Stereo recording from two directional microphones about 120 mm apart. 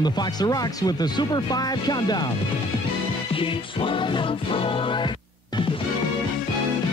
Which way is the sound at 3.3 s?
45° left (ahead or behind).